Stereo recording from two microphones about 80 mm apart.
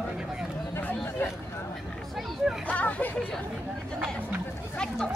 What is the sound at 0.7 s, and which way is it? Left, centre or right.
Chatter, left.